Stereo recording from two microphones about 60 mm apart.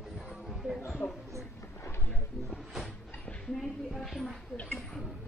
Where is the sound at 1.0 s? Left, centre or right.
Left.